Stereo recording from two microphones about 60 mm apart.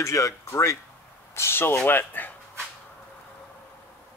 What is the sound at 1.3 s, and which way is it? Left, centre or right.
A man's voice, left.